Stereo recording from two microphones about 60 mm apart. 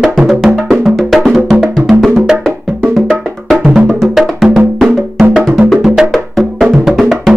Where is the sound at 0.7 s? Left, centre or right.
Centre.